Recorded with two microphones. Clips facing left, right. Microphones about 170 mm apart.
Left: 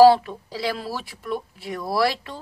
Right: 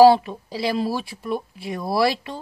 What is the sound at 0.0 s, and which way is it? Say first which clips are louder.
Speech: right 1 dB; 20° right (ahead or behind).